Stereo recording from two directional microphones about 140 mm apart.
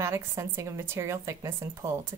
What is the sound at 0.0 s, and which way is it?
Speech, 20° right (ahead or behind).